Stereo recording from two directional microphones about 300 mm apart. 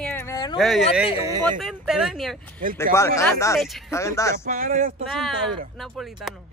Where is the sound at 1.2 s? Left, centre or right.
Centre.